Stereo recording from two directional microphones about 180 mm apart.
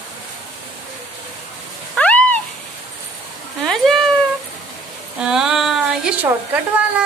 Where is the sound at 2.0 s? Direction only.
10° left (ahead or behind).